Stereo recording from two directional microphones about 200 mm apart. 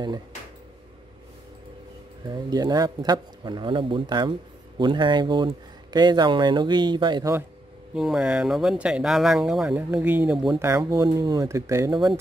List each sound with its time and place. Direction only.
2.2 s a man's voice: 20° right (ahead or behind)
7.9 s speech: 5° right (ahead or behind)
10.5 s speech: 15° right (ahead or behind)